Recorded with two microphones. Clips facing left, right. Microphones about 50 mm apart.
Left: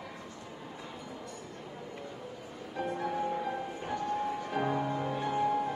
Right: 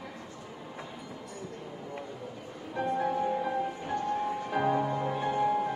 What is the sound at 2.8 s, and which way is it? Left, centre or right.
Music, centre.